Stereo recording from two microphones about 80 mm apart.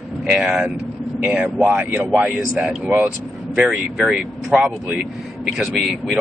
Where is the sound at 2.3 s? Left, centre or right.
Centre.